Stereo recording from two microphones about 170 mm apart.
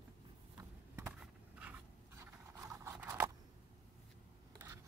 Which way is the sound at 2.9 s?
10° right (ahead or behind).